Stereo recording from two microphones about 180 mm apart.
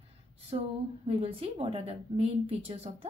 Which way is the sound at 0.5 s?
30° right (ahead or behind).